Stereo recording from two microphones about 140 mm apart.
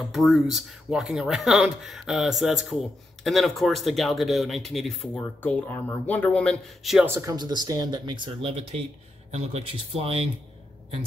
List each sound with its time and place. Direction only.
0.0 s speech: centre (ahead or behind)
7.2 s speech: 25° right (ahead or behind); by 10.1 s 45° right (ahead or behind)